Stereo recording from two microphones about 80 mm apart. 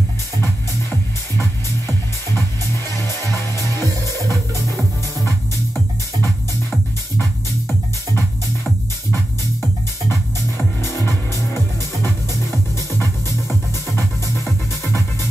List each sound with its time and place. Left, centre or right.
3.3 s music: left
10.8 s music: left